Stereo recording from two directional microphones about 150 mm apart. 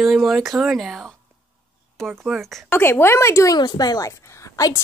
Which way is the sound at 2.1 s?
Centre (ahead or behind).